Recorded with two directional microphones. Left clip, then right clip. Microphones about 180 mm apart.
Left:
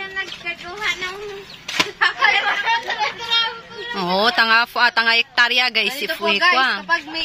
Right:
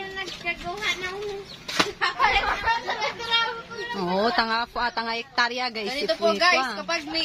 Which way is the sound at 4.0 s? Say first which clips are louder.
Left 6 dB; 30° left (ahead or behind).